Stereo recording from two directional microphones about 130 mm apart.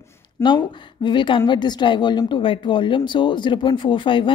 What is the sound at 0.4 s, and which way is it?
Speech, 20° left (ahead or behind).